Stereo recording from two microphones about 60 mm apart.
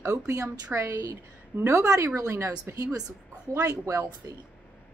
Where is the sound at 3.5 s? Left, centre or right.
Right.